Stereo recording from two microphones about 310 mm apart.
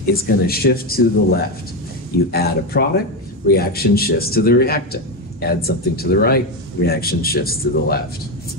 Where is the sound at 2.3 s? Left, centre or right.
Left.